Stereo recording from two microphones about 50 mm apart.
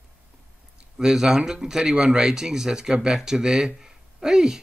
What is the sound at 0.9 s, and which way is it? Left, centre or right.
Speech, centre.